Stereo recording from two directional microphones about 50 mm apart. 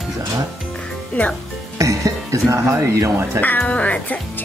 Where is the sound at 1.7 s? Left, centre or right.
Right.